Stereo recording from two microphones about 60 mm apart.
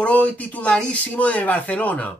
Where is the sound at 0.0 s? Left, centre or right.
Left.